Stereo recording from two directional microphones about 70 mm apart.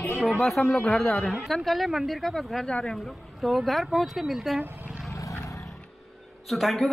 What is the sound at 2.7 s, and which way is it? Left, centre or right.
Speech, centre.